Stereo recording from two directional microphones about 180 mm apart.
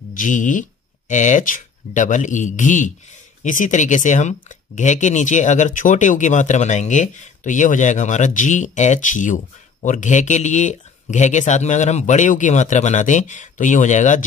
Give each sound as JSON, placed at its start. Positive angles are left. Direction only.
{"t": 0.1, "sound": "speech", "side_deg": 45}